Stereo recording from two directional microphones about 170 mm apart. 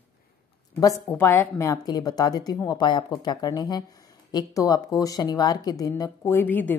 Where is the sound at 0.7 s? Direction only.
15° left (ahead or behind).